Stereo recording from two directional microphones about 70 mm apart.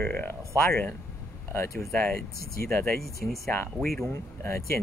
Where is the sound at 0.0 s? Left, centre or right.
Left.